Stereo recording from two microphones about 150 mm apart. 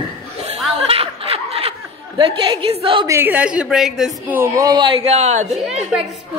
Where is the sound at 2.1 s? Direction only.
30° right (ahead or behind).